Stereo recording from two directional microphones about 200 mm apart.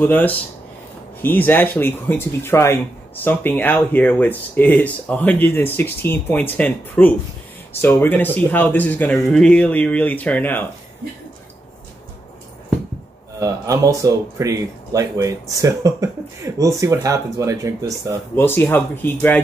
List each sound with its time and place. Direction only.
0.0 s speech: 10° left (ahead or behind)
13.4 s speech: 15° right (ahead or behind)
18.3 s speech: 10° left (ahead or behind)